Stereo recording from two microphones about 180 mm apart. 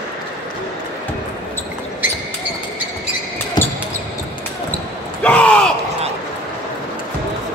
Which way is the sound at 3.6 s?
25° left (ahead or behind).